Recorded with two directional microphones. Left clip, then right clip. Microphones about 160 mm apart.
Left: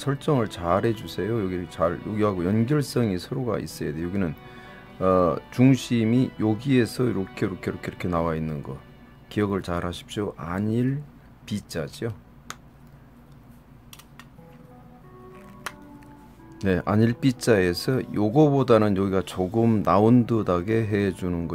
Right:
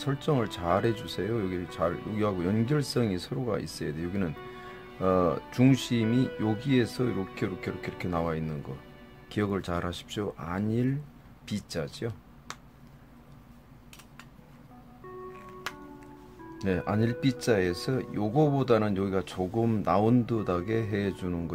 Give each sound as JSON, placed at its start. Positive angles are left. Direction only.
{"t": 0.0, "sound": "speech", "side_deg": 20}
{"t": 12.5, "sound": "a sound", "side_deg": 0}
{"t": 16.5, "sound": "speech", "side_deg": 30}